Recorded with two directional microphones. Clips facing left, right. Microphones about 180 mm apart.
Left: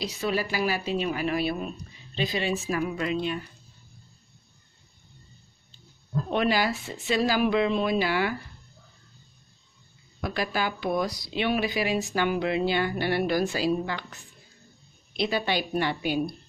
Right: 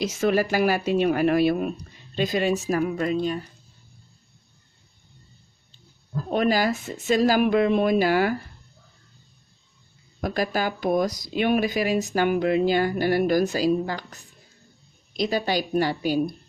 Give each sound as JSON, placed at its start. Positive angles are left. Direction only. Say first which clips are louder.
{"t": 0.0, "sound": "speech", "louder": "right 6 dB", "side_deg": -45}
{"t": 6.3, "sound": "speech", "louder": "right 3 dB", "side_deg": -45}
{"t": 10.2, "sound": "speech", "louder": "right 4 dB", "side_deg": -45}